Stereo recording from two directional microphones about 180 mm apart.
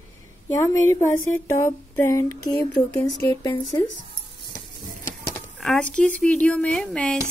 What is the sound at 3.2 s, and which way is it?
Speech, 20° left (ahead or behind).